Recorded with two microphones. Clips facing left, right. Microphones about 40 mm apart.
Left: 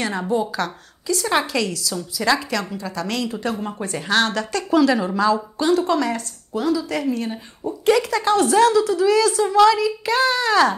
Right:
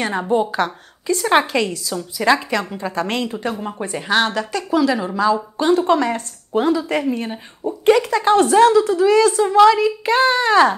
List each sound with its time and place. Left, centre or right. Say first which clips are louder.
0.0 s a woman's voice: right 3 dB; right
5.6 s a woman's voice: right 4 dB; right